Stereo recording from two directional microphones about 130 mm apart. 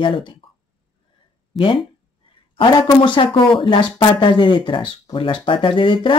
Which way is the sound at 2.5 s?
40° left (ahead or behind).